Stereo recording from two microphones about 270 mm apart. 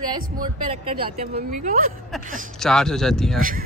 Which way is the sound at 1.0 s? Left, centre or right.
Right.